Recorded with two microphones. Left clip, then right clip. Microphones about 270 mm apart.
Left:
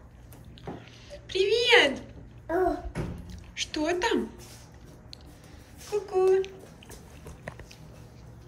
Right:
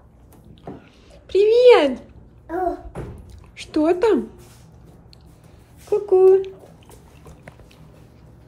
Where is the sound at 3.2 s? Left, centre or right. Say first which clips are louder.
Left 4 dB; centre.